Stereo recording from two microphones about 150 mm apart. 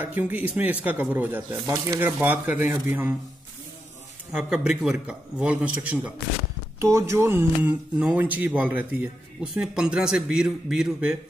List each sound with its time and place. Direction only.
0.0 s a man's voice: 10° right (ahead or behind)
4.3 s a man's voice: 5° right (ahead or behind)